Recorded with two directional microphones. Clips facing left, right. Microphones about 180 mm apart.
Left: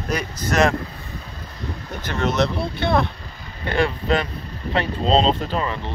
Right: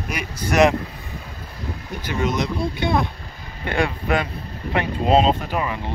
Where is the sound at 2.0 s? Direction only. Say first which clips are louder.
Left 2 dB; 10° right (ahead or behind).